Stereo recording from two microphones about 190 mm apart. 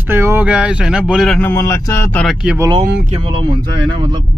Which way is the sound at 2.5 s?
20° right (ahead or behind).